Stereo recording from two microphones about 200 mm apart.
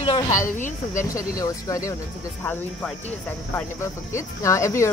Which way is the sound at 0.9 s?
15° left (ahead or behind).